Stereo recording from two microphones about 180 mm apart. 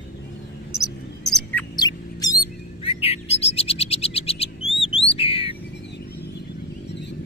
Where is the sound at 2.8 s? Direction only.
35° left (ahead or behind).